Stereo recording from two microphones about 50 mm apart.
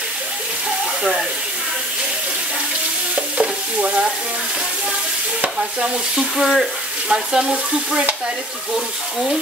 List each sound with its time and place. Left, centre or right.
3.3 s stir: right
5.6 s frying: centre
7.1 s stir: centre